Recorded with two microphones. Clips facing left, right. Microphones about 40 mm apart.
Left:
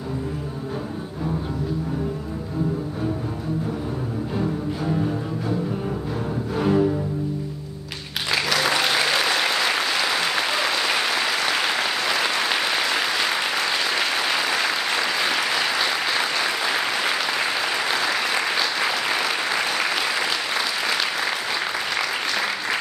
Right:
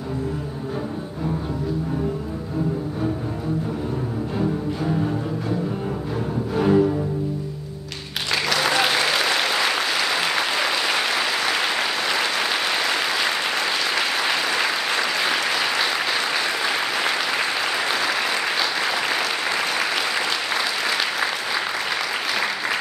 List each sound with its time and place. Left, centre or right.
4.4 s music: centre
8.3 s applause: centre